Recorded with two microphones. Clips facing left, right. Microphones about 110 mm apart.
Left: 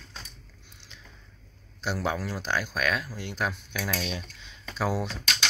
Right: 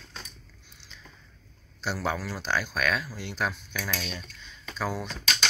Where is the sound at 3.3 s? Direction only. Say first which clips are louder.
Even; 5° left (ahead or behind).